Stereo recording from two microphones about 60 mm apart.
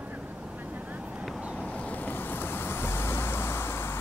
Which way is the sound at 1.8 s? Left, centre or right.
Left.